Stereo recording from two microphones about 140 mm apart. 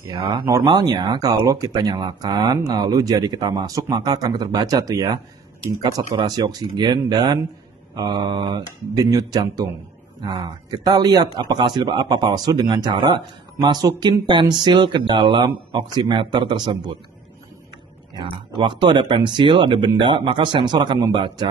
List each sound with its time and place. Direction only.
0.1 s speech: 30° right (ahead or behind)
18.6 s speech: 35° right (ahead or behind)